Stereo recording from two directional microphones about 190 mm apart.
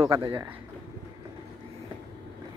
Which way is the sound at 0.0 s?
20° right (ahead or behind).